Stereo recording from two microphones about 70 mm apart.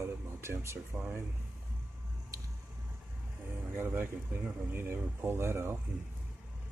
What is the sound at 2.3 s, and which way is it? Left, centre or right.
Vehicle, right.